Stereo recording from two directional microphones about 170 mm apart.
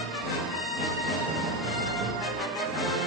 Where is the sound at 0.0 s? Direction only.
Centre (ahead or behind).